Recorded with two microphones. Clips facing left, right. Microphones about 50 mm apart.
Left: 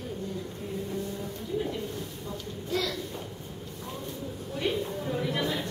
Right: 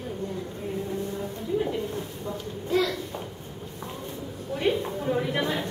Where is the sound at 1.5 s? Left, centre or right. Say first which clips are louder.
Right 4 dB; right.